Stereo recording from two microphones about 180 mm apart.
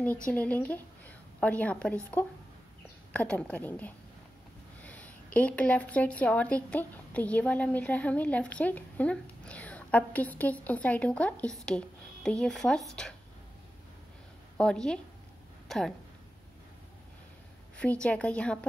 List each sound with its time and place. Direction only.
0.3 s a woman's voice: 10° left (ahead or behind)
14.6 s a woman's voice: 5° left (ahead or behind)
17.7 s speech: 5° left (ahead or behind)